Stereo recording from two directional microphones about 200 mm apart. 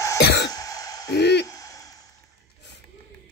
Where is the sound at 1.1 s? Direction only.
55° left (ahead or behind).